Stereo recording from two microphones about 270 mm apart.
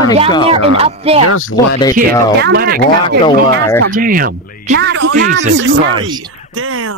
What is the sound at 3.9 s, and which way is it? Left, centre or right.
Speech, right.